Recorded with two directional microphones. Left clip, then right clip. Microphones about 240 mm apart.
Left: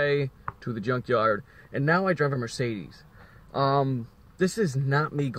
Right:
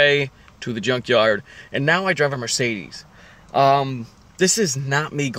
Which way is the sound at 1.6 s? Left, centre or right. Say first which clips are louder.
Right 5 dB; centre.